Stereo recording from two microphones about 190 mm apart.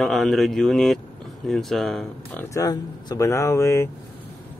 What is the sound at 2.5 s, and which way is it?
Speech, 15° left (ahead or behind).